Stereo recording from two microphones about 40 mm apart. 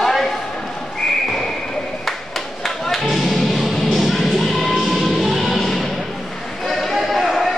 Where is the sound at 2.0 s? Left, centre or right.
Centre.